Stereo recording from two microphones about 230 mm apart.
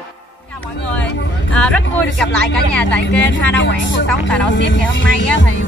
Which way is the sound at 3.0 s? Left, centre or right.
Left.